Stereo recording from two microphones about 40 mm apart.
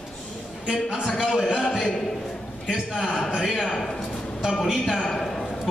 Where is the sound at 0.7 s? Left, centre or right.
Centre.